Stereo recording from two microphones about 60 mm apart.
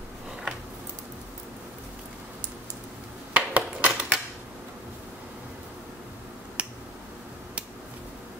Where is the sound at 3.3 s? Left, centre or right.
Right.